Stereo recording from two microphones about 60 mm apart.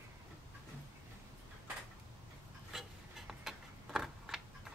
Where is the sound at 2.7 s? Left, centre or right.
Centre.